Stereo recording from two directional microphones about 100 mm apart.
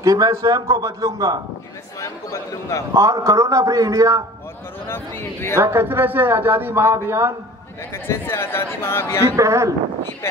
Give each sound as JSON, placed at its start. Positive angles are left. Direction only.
{"t": 0.0, "sound": "a man's voice", "side_deg": -30}
{"t": 2.0, "sound": "speech", "side_deg": 35}
{"t": 2.9, "sound": "a man's voice", "side_deg": -35}
{"t": 4.8, "sound": "a man's voice", "side_deg": 20}
{"t": 5.6, "sound": "a man's voice", "side_deg": -25}
{"t": 7.9, "sound": "a man's voice", "side_deg": 25}
{"t": 9.4, "sound": "a man's voice", "side_deg": -30}